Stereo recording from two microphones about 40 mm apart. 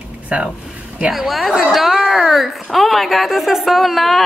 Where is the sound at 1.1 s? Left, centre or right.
Centre.